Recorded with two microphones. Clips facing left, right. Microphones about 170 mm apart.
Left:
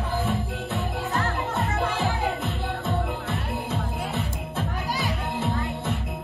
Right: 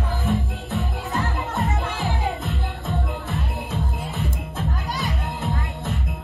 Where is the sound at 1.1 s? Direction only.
20° right (ahead or behind).